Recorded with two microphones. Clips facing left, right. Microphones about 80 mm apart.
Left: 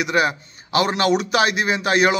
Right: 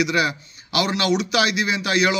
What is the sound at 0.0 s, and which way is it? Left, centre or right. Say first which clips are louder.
A man's voice: left 1 dB; left.